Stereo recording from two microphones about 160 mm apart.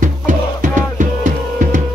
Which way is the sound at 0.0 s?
55° right (ahead or behind).